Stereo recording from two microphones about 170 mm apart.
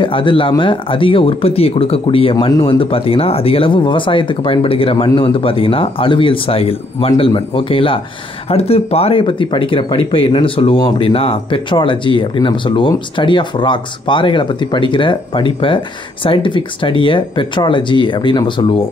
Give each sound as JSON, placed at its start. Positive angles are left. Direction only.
{"t": 0.0, "sound": "speech", "side_deg": 30}